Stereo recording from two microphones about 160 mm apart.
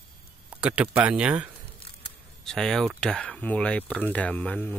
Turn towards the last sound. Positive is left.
turn(degrees=10)  # may be behind; listen again after turning